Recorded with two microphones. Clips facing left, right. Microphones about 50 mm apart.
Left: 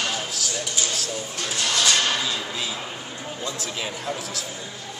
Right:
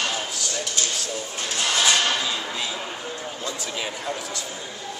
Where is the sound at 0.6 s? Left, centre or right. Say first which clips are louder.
Right 1 dB; centre.